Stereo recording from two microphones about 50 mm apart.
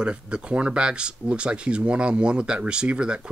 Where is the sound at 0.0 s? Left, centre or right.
Centre.